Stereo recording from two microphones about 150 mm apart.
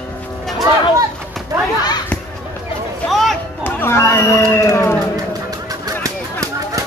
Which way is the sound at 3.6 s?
15° left (ahead or behind).